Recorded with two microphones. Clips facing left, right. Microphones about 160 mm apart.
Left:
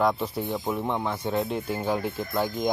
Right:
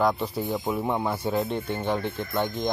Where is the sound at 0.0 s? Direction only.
Centre (ahead or behind).